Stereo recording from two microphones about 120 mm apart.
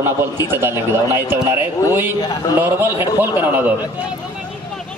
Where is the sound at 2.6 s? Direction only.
20° right (ahead or behind).